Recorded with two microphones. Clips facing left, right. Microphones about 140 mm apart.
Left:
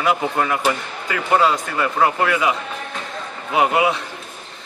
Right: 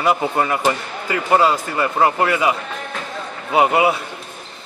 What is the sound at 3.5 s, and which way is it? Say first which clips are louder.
Speech: right 2 dB; 5° right (ahead or behind).